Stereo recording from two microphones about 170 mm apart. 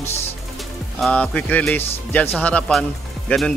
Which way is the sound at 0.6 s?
Centre (ahead or behind).